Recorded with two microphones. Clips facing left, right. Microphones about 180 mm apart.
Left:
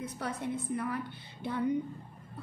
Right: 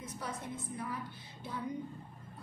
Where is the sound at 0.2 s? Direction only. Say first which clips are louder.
Left 4 dB; 65° left (ahead or behind).